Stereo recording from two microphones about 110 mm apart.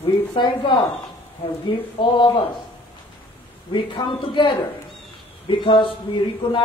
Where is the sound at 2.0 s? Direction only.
45° left (ahead or behind).